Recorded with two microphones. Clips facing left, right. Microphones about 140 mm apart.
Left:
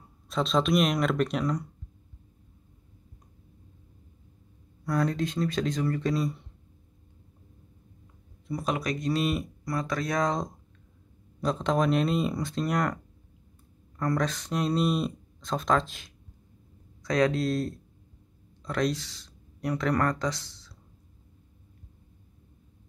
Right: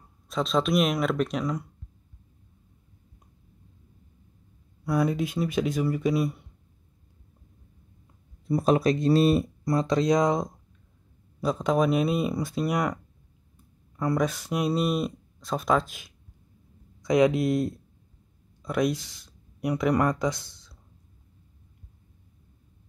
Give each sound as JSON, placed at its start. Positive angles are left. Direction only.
{"t": 0.3, "sound": "speech", "side_deg": 0}
{"t": 4.8, "sound": "speech", "side_deg": -10}
{"t": 8.5, "sound": "speech", "side_deg": -35}